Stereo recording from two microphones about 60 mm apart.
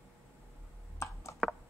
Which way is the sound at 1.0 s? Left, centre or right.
Left.